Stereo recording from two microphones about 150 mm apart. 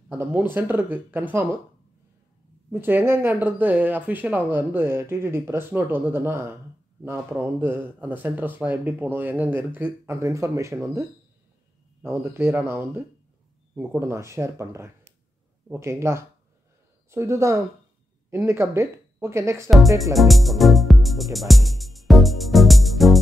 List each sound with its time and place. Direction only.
0.2 s speech: 10° right (ahead or behind)
2.7 s speech: 15° right (ahead or behind)
20.2 s music: centre (ahead or behind)